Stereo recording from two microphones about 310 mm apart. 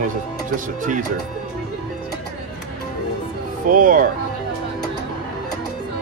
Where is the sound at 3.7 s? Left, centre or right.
Right.